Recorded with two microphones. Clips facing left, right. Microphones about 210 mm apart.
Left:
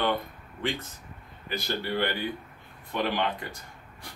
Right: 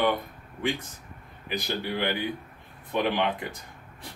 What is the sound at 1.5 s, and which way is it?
Speech, 15° right (ahead or behind).